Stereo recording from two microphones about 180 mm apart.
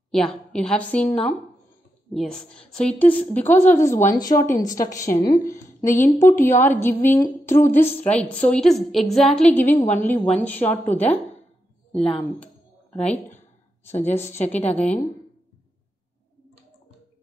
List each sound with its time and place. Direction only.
0.1 s a woman's voice: 5° left (ahead or behind)
12.9 s a woman's voice: 5° left (ahead or behind)